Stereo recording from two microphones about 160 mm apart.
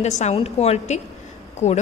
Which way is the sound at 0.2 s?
40° left (ahead or behind).